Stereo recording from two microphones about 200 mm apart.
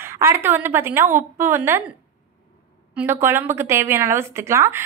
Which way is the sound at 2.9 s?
10° right (ahead or behind).